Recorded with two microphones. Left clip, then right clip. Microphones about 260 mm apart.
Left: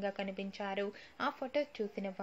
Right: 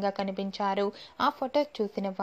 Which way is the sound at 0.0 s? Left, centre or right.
Right.